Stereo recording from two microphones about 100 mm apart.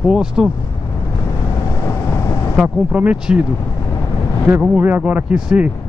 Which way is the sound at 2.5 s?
5° right (ahead or behind).